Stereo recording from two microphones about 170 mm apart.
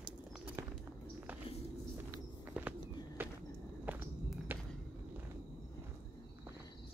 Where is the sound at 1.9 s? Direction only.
10° right (ahead or behind).